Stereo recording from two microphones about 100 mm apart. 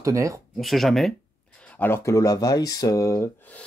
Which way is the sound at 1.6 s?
15° left (ahead or behind).